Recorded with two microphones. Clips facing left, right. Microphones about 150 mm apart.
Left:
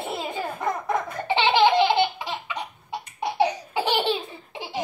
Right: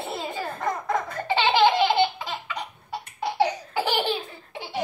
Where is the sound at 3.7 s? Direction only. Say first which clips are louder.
Left 1 dB; 25° left (ahead or behind).